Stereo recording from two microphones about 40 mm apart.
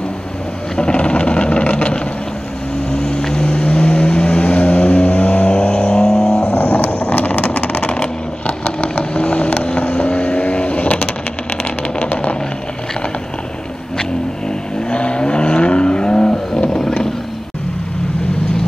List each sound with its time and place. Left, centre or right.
0.7 s vehicle: left
3.0 s vehicle: centre
3.4 s vehicle: left
6.6 s vehicle: left
14.9 s vehicle: left